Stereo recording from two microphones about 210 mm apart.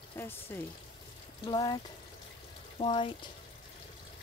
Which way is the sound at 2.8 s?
25° left (ahead or behind).